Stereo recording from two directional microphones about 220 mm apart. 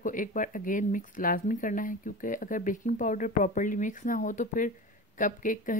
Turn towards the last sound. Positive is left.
turn(degrees=40)  # may be behind; listen again after turning